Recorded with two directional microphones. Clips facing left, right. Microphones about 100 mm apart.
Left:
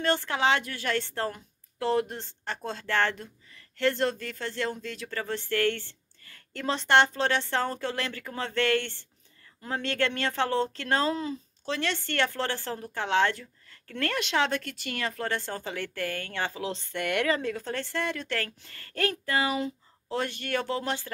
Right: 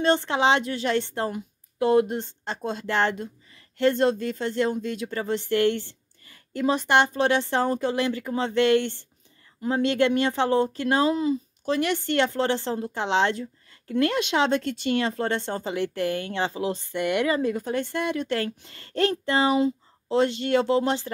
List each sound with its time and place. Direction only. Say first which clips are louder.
0.0 s a woman's voice: right 5 dB; 20° right (ahead or behind)